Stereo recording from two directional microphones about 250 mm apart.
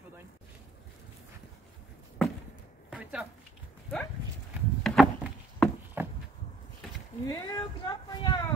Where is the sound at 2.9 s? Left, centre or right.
Centre.